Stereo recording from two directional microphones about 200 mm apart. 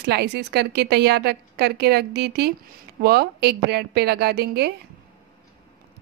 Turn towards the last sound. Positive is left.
turn(degrees=-55)  # may be behind; listen again after turning